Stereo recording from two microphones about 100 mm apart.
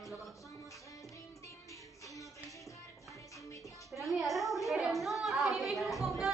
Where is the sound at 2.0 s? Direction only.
35° left (ahead or behind).